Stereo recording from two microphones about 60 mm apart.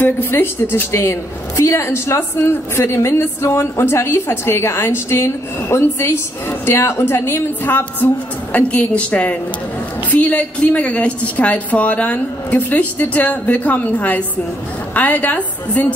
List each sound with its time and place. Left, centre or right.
0.0 s a woman's voice: left
8.5 s a woman's voice: left